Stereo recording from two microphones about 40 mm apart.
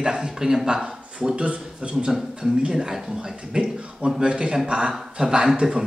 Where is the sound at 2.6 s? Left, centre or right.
Centre.